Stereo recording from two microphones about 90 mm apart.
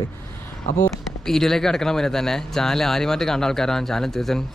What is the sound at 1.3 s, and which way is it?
Speech, 5° left (ahead or behind).